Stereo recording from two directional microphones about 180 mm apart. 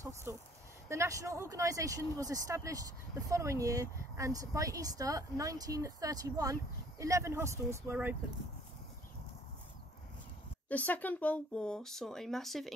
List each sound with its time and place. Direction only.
0.0 s a sound: 15° right (ahead or behind)
0.8 s speech: 15° right (ahead or behind)
10.7 s speech: 10° left (ahead or behind)